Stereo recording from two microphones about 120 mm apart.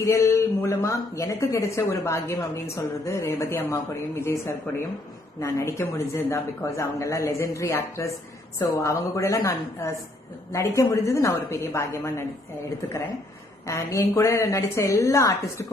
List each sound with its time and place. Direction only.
0.0 s speech: 25° left (ahead or behind)
13.7 s speech: 25° left (ahead or behind)